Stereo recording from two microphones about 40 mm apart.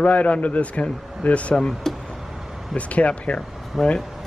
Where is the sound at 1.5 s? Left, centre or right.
Centre.